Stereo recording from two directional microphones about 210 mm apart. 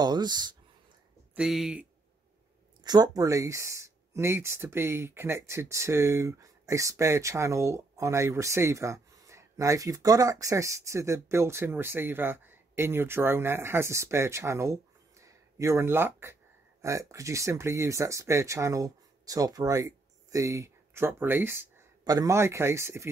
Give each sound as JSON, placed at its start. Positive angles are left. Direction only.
{"t": 0.0, "sound": "speech", "side_deg": -20}
{"t": 1.3, "sound": "speech", "side_deg": 0}
{"t": 2.8, "sound": "speech", "side_deg": -20}